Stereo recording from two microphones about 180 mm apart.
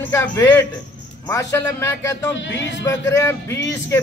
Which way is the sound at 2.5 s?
80° left.